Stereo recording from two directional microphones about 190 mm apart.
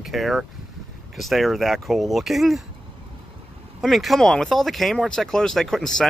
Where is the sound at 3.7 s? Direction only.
Centre (ahead or behind).